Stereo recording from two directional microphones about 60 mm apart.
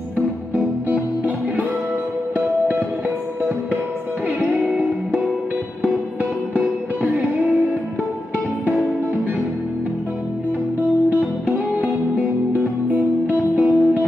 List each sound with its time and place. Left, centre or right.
0.6 s music: right
4.6 s music: centre
11.4 s music: right